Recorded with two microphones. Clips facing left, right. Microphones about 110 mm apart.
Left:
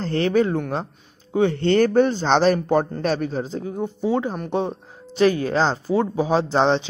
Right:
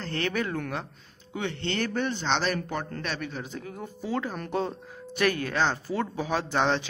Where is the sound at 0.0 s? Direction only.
30° left (ahead or behind).